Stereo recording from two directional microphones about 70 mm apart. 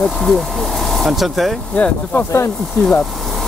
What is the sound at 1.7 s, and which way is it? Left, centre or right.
Speech, centre.